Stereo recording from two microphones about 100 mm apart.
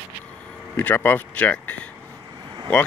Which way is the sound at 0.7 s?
20° left (ahead or behind).